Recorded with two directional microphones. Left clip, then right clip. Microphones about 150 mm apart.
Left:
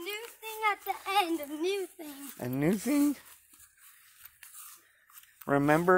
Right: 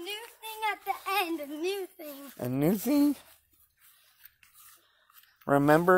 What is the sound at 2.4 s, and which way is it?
Speech, 45° right (ahead or behind).